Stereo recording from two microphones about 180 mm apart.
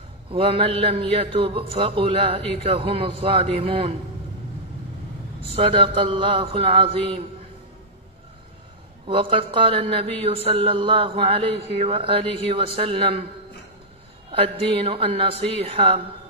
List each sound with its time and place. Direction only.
0.3 s a man's voice: 30° right (ahead or behind)
5.5 s a man's voice: 30° right (ahead or behind)
9.0 s a man's voice: 30° right (ahead or behind)
14.3 s a man's voice: 30° right (ahead or behind)